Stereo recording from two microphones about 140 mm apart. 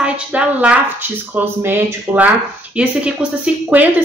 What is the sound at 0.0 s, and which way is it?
Speech, 10° right (ahead or behind).